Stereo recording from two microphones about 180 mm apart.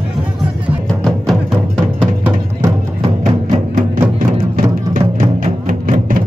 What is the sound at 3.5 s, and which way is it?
Music, 45° right (ahead or behind).